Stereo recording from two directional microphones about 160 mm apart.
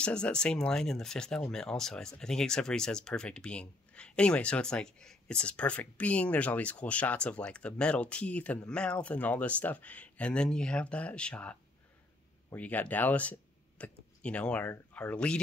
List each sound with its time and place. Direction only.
0.0 s speech: 5° left (ahead or behind)